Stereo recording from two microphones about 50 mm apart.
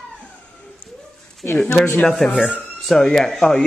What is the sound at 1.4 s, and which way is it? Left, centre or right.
Speech, left.